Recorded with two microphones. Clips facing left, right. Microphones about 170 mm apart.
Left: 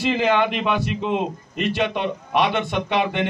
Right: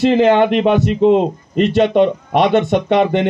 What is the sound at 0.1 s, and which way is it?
A man's voice, 50° right (ahead or behind).